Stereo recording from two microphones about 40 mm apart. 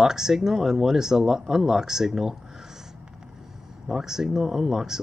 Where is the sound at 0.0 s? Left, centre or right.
Centre.